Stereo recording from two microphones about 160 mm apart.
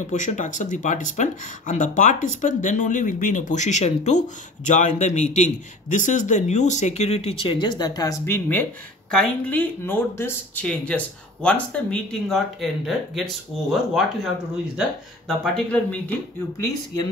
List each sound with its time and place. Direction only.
0.0 s speech: 50° left (ahead or behind); by 16.6 s 10° left (ahead or behind)